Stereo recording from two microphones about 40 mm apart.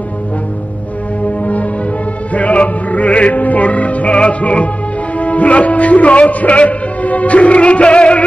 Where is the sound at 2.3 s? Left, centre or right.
Left.